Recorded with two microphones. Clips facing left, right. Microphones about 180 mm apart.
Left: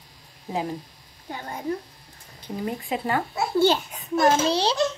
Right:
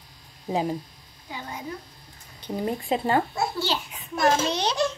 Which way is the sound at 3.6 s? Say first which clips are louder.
Left 9 dB; 50° left (ahead or behind).